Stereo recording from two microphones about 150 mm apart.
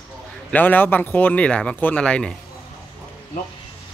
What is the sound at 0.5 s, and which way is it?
Speech, 10° left (ahead or behind).